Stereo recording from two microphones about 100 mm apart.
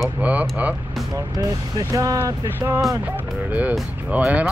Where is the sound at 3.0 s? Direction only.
15° right (ahead or behind).